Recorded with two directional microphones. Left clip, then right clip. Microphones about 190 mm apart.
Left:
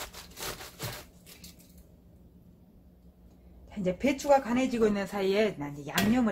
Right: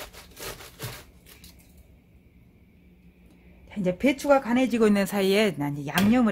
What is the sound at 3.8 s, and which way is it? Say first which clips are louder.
Speech: right 5 dB; 55° right (ahead or behind).